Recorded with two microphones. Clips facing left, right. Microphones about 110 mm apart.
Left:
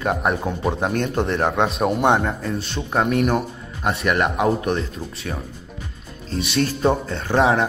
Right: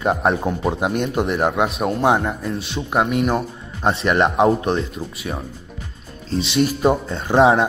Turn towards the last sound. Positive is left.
turn(degrees=-25)  # may be behind; listen again after turning